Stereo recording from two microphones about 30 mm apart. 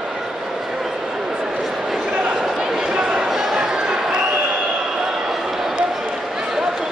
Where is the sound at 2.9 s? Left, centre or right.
Right.